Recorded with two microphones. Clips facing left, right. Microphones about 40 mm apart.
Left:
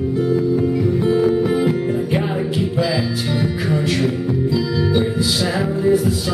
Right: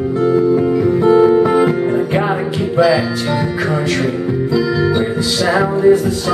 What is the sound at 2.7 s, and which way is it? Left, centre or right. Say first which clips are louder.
Music: right 10 dB; centre.